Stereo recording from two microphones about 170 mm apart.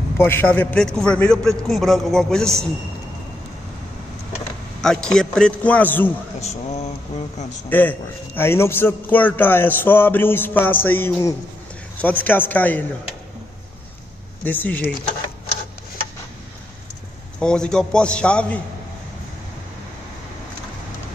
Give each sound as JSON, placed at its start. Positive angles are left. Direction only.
{"t": 0.2, "sound": "a man's voice", "side_deg": 10}
{"t": 4.8, "sound": "a man's voice", "side_deg": 5}
{"t": 6.4, "sound": "speech", "side_deg": 40}
{"t": 7.7, "sound": "a man's voice", "side_deg": 10}
{"t": 14.4, "sound": "a man's voice", "side_deg": 10}
{"t": 17.4, "sound": "a man's voice", "side_deg": 5}